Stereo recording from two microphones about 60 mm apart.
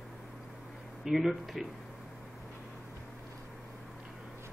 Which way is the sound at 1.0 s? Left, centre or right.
Centre.